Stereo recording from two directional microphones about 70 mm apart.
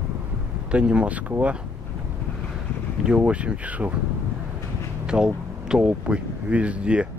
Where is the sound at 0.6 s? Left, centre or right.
Centre.